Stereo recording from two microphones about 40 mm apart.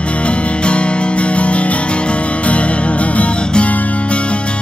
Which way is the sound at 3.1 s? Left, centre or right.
Left.